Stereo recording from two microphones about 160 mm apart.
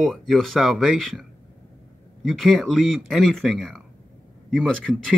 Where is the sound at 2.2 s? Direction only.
Centre (ahead or behind).